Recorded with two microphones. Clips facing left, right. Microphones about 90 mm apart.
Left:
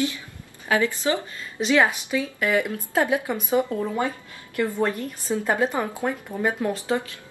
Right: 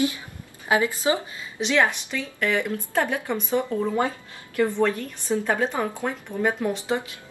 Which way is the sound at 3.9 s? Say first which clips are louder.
Right 1 dB; 25° right (ahead or behind).